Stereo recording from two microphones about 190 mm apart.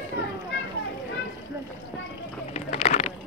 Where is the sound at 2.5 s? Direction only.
35° left (ahead or behind).